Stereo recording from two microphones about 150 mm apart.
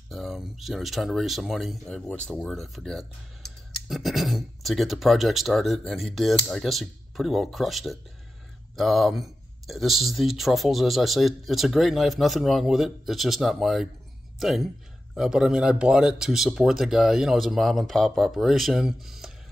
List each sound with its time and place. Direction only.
0.1 s speech: centre (ahead or behind)